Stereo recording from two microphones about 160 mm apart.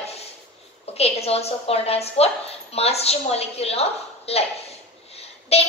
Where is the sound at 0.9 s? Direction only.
40° left (ahead or behind).